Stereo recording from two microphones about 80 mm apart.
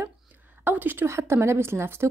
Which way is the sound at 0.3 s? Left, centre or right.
Right.